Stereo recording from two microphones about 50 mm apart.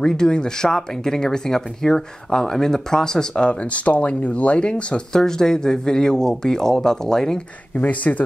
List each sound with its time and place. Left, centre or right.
0.0 s speech: centre
7.7 s speech: left